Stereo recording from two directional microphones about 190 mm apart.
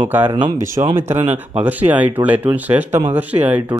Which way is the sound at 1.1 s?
35° right (ahead or behind).